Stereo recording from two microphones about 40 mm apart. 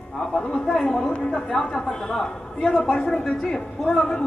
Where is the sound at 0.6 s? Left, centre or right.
Centre.